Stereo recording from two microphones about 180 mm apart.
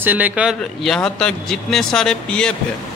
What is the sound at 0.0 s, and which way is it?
A man's voice, 10° right (ahead or behind).